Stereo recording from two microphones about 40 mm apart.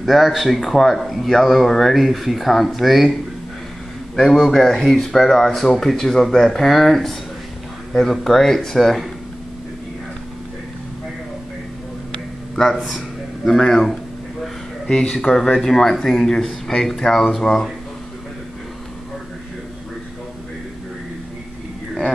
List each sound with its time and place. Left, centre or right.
0.0 s speech: centre
4.2 s speech: centre
12.8 s a sound: centre
13.6 s speech: centre
14.4 s a sound: centre
15.2 s speech: centre